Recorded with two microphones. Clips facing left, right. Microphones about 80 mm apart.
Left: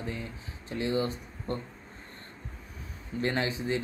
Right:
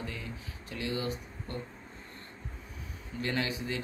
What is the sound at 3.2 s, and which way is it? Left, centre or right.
Speech, left.